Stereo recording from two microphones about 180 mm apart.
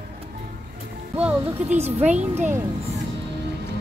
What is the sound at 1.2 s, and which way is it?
Music, 10° right (ahead or behind).